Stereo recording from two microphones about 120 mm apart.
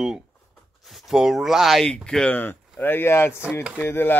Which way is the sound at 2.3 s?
15° left (ahead or behind).